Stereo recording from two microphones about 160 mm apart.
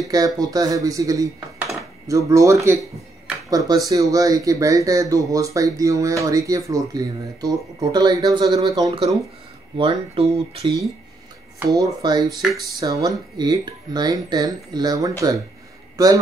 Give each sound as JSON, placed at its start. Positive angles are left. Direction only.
{"t": 0.1, "sound": "speech", "side_deg": -20}
{"t": 9.8, "sound": "speech", "side_deg": -35}
{"t": 11.8, "sound": "speech", "side_deg": -25}